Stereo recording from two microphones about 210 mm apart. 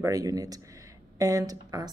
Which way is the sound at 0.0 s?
15° right (ahead or behind).